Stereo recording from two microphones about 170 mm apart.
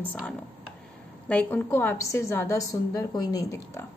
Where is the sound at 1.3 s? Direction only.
10° left (ahead or behind).